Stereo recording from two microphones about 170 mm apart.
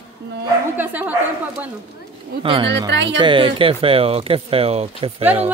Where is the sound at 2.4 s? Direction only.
30° right (ahead or behind).